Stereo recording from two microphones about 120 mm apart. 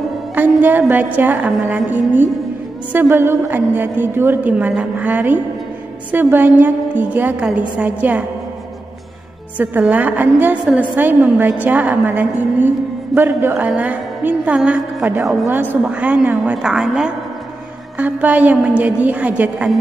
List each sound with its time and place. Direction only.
0.4 s a woman's voice: 15° right (ahead or behind)
9.6 s a woman's voice: 10° right (ahead or behind)
15.4 s a woman's voice: 20° right (ahead or behind)